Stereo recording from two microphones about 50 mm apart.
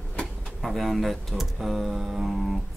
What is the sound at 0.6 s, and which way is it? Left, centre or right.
Speech, centre.